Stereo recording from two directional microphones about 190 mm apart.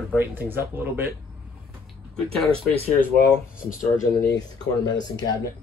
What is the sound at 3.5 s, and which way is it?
Speech, 45° left (ahead or behind).